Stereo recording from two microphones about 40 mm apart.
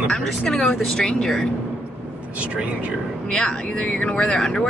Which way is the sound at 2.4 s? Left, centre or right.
Right.